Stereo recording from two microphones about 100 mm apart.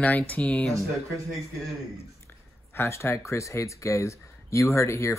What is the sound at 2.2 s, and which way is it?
Speech, 25° left (ahead or behind).